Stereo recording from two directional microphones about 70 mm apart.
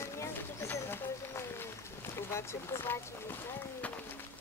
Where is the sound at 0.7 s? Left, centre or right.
Left.